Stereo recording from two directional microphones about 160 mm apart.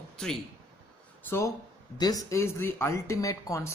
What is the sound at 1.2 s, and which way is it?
Speech, 15° left (ahead or behind).